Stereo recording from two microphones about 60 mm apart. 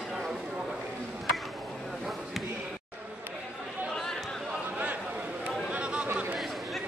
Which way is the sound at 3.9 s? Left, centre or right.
Centre.